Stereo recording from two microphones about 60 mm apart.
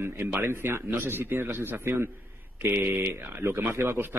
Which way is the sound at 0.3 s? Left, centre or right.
Right.